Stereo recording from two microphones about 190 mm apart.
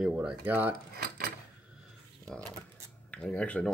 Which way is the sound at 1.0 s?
50° right (ahead or behind).